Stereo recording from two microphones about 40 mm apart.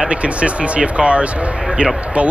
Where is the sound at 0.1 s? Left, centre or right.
Right.